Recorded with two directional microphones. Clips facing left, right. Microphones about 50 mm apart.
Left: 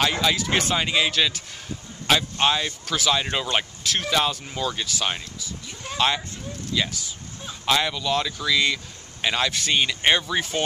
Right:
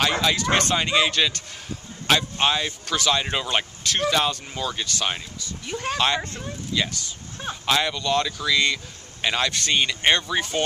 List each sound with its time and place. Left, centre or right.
0.0 s speech: centre
5.6 s speech: right
5.9 s speech: centre